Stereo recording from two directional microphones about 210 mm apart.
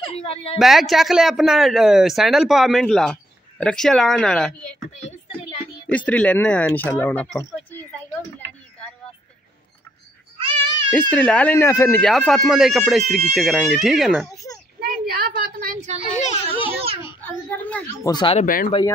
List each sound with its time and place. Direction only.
0.0 s a woman's voice: 30° left (ahead or behind)
0.6 s speech: centre (ahead or behind)
5.9 s speech: 5° left (ahead or behind)
10.4 s a sound: 25° right (ahead or behind)
10.9 s speech: 5° left (ahead or behind)
12.1 s speech: centre (ahead or behind)
14.3 s children playing: 15° left (ahead or behind)
14.8 s a sound: 45° right (ahead or behind)
16.0 s a sound: 35° left (ahead or behind)
17.5 s a woman's voice: 10° left (ahead or behind)
18.1 s speech: 25° left (ahead or behind)
18.4 s speech: 40° left (ahead or behind)